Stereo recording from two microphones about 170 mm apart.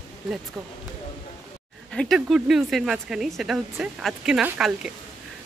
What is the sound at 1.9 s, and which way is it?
Speech, 5° left (ahead or behind).